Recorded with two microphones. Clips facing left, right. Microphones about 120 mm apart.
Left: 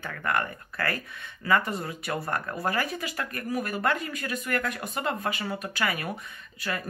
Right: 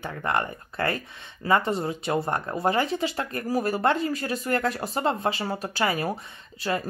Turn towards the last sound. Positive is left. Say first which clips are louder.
# right 5 dB
turn(degrees=-30)  # may be behind; listen again after turning